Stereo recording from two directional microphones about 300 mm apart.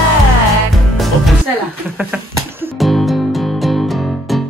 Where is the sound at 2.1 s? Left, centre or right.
Centre.